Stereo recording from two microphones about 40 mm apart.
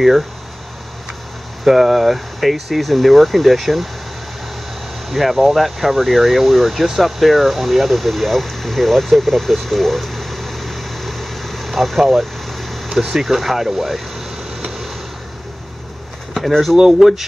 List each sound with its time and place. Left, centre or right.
1.6 s speech: centre
5.1 s speech: centre
12.4 s vehicle: centre
12.9 s speech: centre
16.3 s speech: centre